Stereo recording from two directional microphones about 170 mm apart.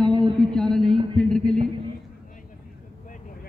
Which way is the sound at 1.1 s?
5° left (ahead or behind).